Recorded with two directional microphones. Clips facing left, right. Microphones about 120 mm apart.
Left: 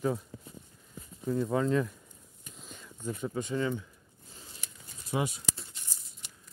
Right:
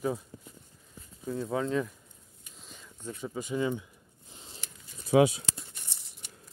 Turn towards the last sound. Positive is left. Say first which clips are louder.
# right 10 dB
turn(degrees=-90)